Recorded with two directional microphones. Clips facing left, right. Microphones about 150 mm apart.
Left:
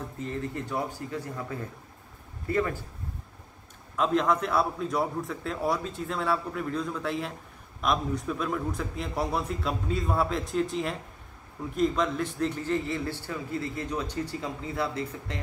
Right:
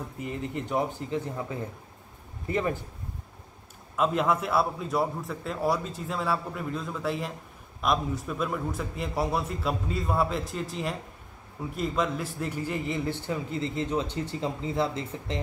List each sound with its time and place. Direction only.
0.2 s a man's voice: 15° right (ahead or behind)
3.9 s a man's voice: 5° right (ahead or behind); by 15.4 s 25° right (ahead or behind)